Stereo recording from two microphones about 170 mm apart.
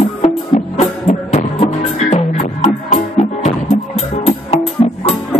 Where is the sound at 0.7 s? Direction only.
40° left (ahead or behind).